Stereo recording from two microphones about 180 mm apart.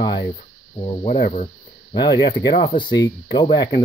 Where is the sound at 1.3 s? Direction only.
40° left (ahead or behind).